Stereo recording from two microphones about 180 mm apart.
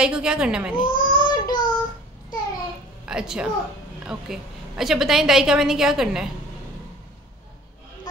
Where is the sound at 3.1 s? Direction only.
5° right (ahead or behind).